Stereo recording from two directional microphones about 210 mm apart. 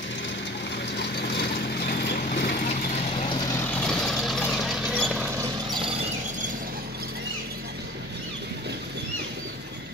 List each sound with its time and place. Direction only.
0.9 s vehicle: 55° left (ahead or behind)
2.7 s vehicle: 30° left (ahead or behind)
3.5 s vehicle: 5° left (ahead or behind)